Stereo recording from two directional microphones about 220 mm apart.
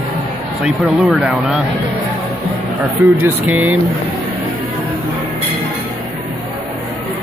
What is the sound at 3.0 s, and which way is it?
Speech, 5° right (ahead or behind).